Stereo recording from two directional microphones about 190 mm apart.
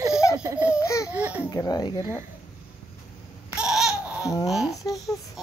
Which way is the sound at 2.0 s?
15° right (ahead or behind).